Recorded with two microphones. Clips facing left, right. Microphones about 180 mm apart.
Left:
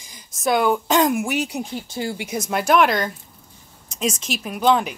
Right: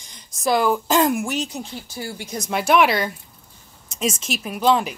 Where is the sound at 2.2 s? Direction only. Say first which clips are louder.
Right 1 dB; 5° left (ahead or behind).